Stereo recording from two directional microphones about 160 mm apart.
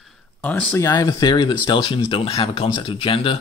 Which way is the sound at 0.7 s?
25° left (ahead or behind).